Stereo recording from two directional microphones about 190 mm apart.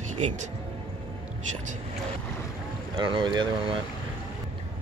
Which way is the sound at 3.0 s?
25° right (ahead or behind).